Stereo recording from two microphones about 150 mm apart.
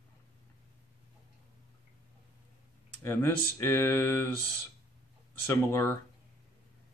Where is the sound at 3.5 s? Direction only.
15° left (ahead or behind).